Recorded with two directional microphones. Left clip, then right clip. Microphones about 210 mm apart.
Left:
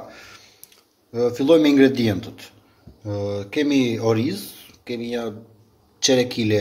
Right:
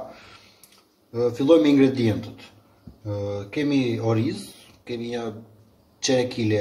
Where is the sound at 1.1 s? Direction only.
45° left (ahead or behind).